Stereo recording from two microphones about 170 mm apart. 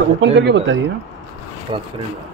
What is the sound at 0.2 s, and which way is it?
Speech, 85° right.